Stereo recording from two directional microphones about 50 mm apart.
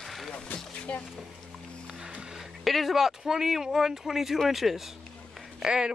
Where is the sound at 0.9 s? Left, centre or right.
Left.